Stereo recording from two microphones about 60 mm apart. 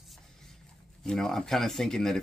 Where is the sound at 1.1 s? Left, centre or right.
Centre.